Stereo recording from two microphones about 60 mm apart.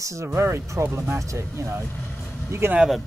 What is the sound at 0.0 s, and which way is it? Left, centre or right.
Speech, right.